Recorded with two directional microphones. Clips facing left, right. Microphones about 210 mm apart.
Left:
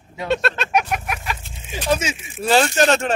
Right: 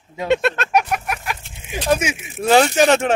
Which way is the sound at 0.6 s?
Centre (ahead or behind).